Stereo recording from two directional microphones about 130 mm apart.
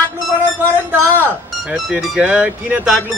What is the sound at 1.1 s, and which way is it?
Speech, 15° left (ahead or behind).